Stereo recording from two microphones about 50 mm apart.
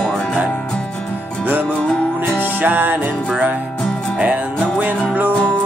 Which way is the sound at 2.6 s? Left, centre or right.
Right.